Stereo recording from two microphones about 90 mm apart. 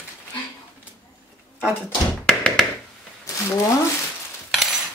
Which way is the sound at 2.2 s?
5° left (ahead or behind).